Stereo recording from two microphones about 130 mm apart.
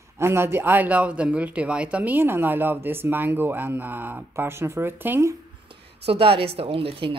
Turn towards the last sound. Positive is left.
turn(degrees=-45)  # may be behind; listen again after turning